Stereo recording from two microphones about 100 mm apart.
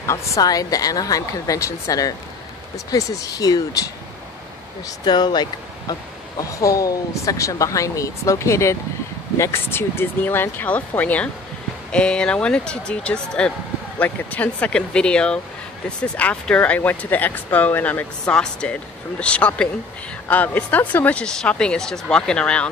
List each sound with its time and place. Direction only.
0.0 s speech: 35° left (ahead or behind)
5.0 s speech: 45° left (ahead or behind); by 22.7 s 10° left (ahead or behind)